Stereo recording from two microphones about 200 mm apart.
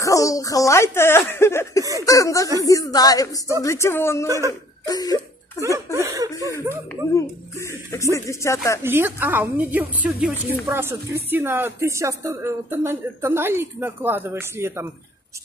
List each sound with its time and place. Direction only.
0.0 s speech: 15° left (ahead or behind)
4.3 s speech: 15° right (ahead or behind)
4.8 s a sound: 20° left (ahead or behind)
5.6 s speech: 15° left (ahead or behind)
5.9 s speech: 15° right (ahead or behind)
7.2 s speech: 15° left (ahead or behind)
8.8 s speech: 10° right (ahead or behind)